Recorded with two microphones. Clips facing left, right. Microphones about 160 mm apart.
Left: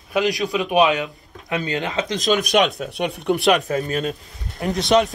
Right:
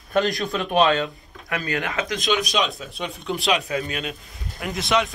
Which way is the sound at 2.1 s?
40° left (ahead or behind).